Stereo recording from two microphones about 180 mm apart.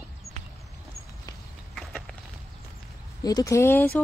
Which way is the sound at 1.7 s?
Centre (ahead or behind).